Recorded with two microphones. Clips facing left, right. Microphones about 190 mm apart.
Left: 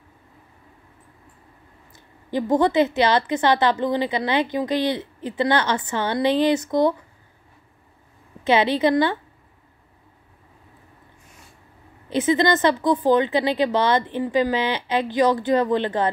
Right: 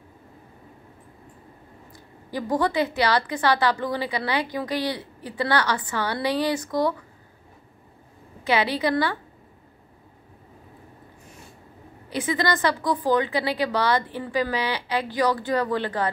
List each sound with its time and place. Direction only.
1.9 s a woman's voice: 20° left (ahead or behind)
8.5 s a woman's voice: 25° left (ahead or behind)
12.1 s a woman's voice: 25° left (ahead or behind)